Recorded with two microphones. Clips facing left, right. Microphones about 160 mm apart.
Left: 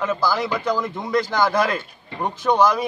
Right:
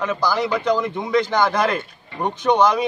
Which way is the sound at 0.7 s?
Centre (ahead or behind).